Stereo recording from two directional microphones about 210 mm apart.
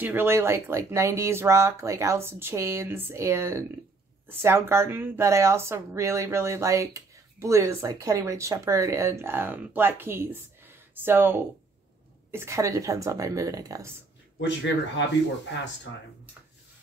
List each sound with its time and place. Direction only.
0.0 s a woman's voice: 10° right (ahead or behind)
14.4 s speech: 60° left (ahead or behind)